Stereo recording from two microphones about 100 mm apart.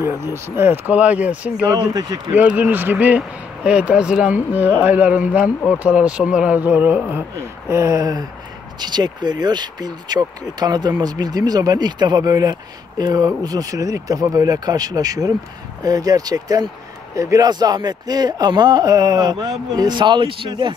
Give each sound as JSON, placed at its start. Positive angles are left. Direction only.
{"t": 0.0, "sound": "speech", "side_deg": -25}
{"t": 1.8, "sound": "a man's voice", "side_deg": -45}
{"t": 2.3, "sound": "a man's voice", "side_deg": -15}